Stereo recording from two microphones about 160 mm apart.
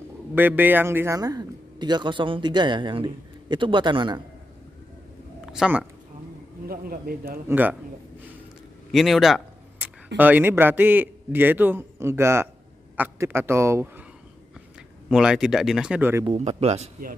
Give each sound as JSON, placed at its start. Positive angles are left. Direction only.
{"t": 0.3, "sound": "a man's voice", "side_deg": -10}
{"t": 5.4, "sound": "speech", "side_deg": -5}
{"t": 6.7, "sound": "speech", "side_deg": -65}
{"t": 7.4, "sound": "a man's voice", "side_deg": -10}
{"t": 8.9, "sound": "a sound", "side_deg": 0}
{"t": 10.1, "sound": "a man's voice", "side_deg": -10}
{"t": 15.0, "sound": "speech", "side_deg": 0}
{"t": 16.3, "sound": "speech", "side_deg": -45}